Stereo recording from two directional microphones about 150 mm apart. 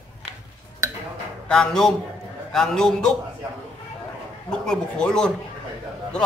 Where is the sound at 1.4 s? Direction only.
5° left (ahead or behind).